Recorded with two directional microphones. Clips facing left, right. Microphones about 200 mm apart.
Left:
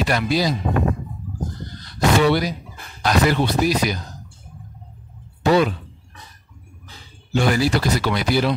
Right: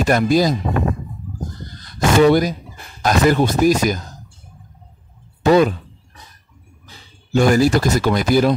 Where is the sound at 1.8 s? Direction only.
45° right (ahead or behind).